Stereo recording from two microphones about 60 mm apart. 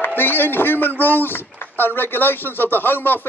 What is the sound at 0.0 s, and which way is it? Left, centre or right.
Speech, left.